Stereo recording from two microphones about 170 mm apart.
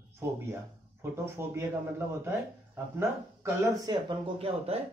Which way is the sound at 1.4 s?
15° right (ahead or behind).